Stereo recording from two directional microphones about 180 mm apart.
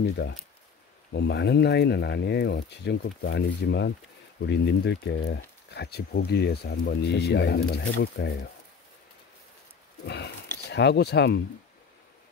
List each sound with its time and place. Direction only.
1.1 s speech: 70° left (ahead or behind)
10.0 s speech: 70° left (ahead or behind)